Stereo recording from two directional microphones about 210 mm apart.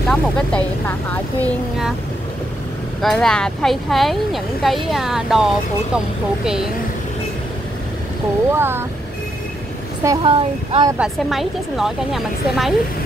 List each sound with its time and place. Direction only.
0.1 s speech: 5° left (ahead or behind)
3.0 s speech: centre (ahead or behind)
8.5 s speech: 10° right (ahead or behind)
10.0 s speech: 20° right (ahead or behind)
11.0 s speech: centre (ahead or behind)